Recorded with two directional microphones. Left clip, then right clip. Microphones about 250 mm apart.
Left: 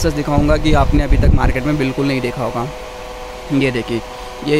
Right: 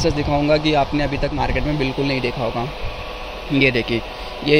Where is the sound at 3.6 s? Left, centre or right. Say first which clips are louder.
Right 2 dB; centre.